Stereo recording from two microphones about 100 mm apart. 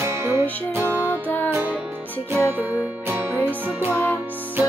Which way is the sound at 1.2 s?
20° left (ahead or behind).